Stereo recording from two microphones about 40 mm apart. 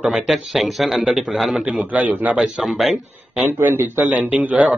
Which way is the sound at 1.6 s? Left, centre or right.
Right.